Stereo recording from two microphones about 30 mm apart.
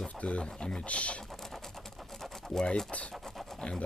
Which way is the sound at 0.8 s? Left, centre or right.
Left.